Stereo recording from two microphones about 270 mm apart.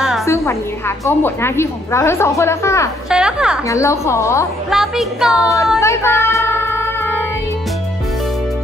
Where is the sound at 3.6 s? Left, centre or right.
Centre.